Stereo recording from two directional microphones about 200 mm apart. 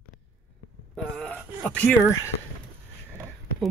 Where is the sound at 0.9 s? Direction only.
5° left (ahead or behind).